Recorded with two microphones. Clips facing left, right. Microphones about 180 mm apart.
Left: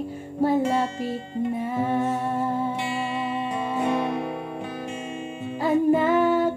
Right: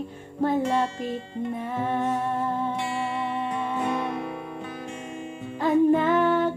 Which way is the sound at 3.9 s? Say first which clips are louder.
Left 3 dB; 25° left (ahead or behind).